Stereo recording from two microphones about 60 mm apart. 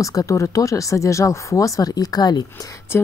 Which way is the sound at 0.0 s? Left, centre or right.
Left.